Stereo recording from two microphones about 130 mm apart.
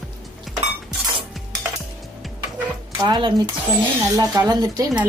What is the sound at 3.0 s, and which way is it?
Speech, 35° right (ahead or behind).